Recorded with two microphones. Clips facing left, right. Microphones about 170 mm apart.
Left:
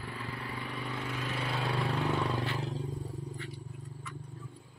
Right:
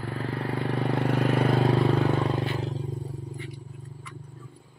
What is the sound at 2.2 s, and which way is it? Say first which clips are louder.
Vehicle: right 6 dB; 25° right (ahead or behind).